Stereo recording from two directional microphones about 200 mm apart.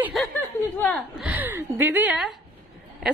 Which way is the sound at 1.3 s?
10° right (ahead or behind).